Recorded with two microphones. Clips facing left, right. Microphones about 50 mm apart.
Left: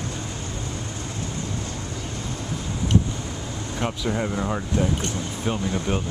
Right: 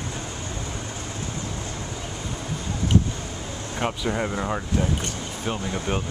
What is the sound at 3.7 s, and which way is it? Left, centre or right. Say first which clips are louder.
Speech: even; centre.